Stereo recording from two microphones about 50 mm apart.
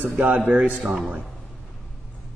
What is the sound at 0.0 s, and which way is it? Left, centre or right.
Speech, right.